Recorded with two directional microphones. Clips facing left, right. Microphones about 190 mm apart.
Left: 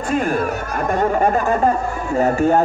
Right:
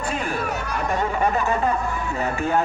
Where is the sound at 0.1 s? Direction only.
50° left (ahead or behind).